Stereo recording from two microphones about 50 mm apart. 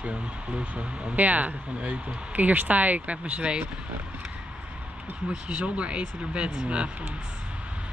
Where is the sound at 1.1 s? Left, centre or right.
Right.